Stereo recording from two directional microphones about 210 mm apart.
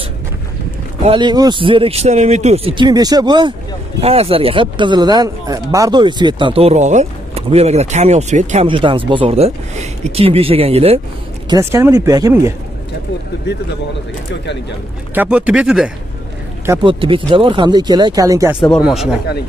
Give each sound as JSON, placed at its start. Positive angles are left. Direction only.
{"t": 1.0, "sound": "speech", "side_deg": -20}
{"t": 11.4, "sound": "speech", "side_deg": -15}
{"t": 15.1, "sound": "speech", "side_deg": -5}
{"t": 17.0, "sound": "speech", "side_deg": -25}
{"t": 18.7, "sound": "speech", "side_deg": 0}